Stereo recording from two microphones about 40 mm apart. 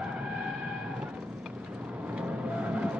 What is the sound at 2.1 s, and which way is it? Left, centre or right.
Vehicle, right.